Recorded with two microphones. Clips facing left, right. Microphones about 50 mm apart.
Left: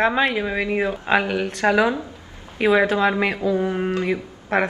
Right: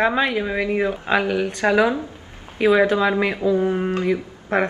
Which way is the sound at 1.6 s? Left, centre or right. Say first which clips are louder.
Even; centre.